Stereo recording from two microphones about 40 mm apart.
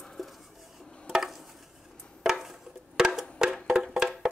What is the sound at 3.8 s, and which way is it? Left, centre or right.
Music, centre.